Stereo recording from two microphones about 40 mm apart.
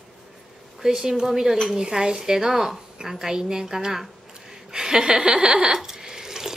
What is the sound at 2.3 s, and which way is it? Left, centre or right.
A woman's voice, centre.